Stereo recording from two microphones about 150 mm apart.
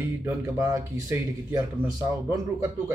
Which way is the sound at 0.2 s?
20° right (ahead or behind).